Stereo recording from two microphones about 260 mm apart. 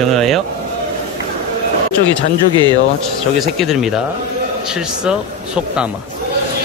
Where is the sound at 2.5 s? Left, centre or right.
Centre.